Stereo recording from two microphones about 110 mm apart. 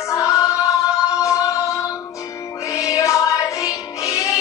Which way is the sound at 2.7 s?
30° left (ahead or behind).